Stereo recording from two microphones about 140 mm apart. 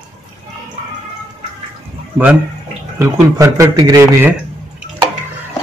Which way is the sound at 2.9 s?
20° right (ahead or behind).